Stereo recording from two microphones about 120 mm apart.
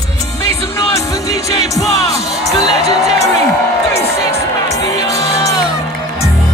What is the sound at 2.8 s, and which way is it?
Music, 65° right (ahead or behind).